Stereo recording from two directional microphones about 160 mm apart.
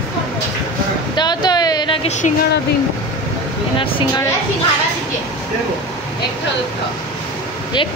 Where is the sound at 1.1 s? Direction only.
25° left (ahead or behind).